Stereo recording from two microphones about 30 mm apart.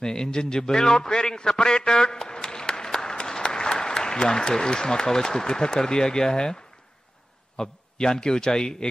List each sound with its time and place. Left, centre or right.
0.0 s a man's voice: left